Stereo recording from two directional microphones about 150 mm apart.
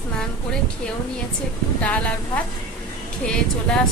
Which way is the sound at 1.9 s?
10° left (ahead or behind).